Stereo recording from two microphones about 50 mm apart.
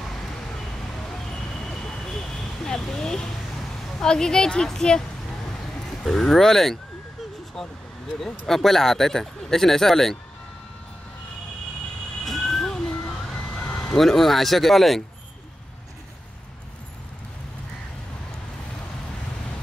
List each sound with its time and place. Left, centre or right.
1.7 s vehicle: centre
4.0 s speech: centre
6.0 s speech: centre
8.2 s speech: centre
12.3 s vehicle: centre
13.5 s a sound: left
13.9 s speech: centre